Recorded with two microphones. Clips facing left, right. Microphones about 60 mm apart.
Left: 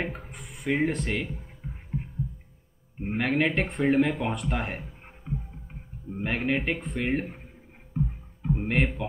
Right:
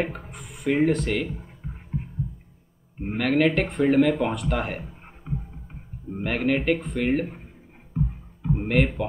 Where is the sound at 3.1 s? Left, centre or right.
Centre.